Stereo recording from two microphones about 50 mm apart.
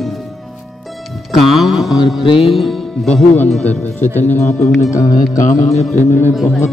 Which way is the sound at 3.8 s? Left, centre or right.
Left.